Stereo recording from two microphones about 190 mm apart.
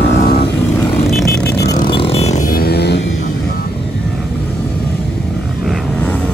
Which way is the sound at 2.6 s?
60° left (ahead or behind).